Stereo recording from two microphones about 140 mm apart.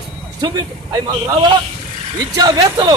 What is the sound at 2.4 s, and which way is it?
Speech, 30° right (ahead or behind).